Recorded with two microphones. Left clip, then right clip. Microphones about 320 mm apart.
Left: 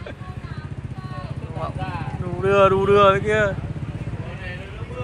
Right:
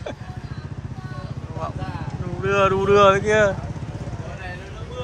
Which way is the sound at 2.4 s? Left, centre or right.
Centre.